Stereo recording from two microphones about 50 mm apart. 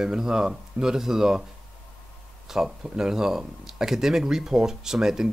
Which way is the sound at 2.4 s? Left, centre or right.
Centre.